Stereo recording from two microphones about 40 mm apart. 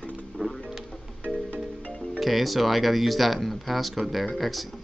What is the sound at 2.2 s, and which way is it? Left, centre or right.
Speech, centre.